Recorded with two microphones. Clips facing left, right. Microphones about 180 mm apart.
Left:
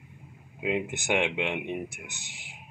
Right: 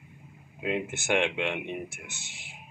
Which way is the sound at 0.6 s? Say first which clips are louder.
Left 1 dB; 15° left (ahead or behind).